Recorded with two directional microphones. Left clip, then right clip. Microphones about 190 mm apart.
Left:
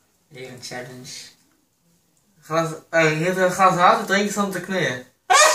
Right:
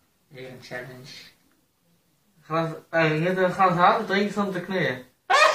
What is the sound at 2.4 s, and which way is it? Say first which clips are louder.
Speech: left 4 dB; 25° left (ahead or behind).